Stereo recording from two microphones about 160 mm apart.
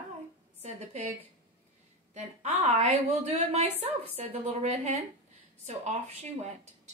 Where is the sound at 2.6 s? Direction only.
45° right (ahead or behind).